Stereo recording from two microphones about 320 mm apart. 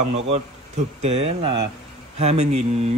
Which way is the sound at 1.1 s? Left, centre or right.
Centre.